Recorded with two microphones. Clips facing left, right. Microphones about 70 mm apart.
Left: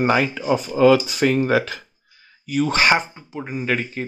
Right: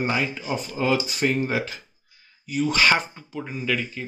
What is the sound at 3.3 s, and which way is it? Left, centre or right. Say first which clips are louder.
Speech: left 4 dB; left.